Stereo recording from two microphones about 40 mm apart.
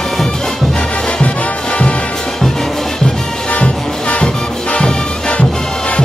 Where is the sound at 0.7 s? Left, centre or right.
Left.